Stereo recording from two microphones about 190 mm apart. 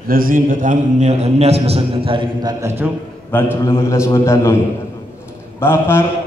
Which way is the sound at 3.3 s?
10° left (ahead or behind).